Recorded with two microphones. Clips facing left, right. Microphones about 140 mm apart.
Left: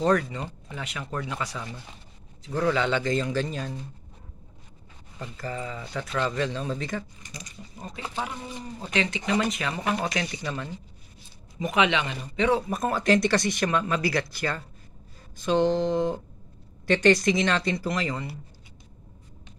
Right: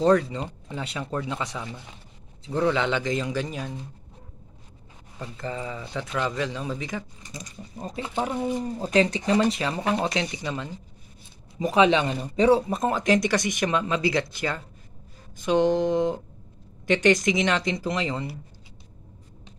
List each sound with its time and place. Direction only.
0.0 s speech: 25° right (ahead or behind)
5.4 s speech: 20° right (ahead or behind)
7.2 s a man's voice: 35° right (ahead or behind); by 10.7 s 15° right (ahead or behind)
11.6 s a man's voice: 30° right (ahead or behind)
12.6 s speech: 20° right (ahead or behind)